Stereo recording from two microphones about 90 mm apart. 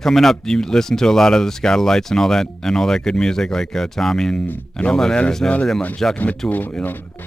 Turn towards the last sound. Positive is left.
turn(degrees=20)  # may be behind; listen again after turning